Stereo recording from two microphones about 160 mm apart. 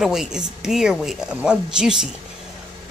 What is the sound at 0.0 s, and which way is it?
Speech, 5° right (ahead or behind).